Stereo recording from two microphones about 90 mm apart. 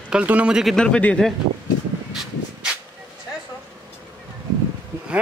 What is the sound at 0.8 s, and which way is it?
Speech, 10° left (ahead or behind).